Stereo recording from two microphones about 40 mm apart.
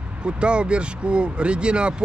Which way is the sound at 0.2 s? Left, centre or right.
Right.